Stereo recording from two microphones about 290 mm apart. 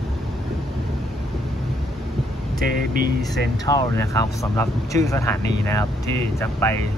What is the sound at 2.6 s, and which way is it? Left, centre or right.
Speech, right.